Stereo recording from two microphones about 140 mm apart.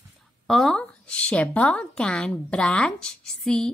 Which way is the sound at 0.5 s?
5° left (ahead or behind).